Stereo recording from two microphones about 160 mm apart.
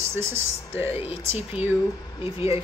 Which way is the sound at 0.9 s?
40° left (ahead or behind).